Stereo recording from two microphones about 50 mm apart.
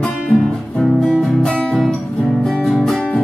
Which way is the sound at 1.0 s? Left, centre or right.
Centre.